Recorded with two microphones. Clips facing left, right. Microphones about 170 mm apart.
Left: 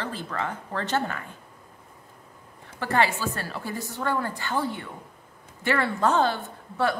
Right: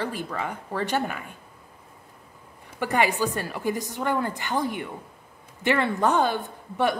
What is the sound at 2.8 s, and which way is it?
Speech, 15° right (ahead or behind).